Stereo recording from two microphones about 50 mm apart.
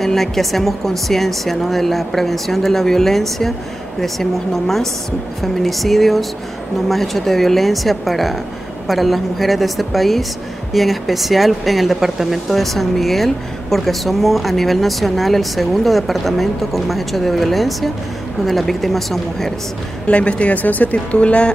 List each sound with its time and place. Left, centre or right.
0.0 s speech: centre
20.1 s speech: left